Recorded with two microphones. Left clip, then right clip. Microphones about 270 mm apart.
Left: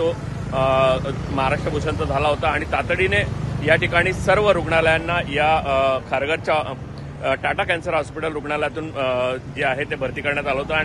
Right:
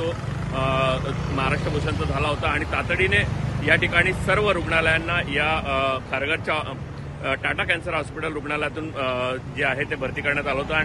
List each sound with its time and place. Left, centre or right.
0.6 s speech: centre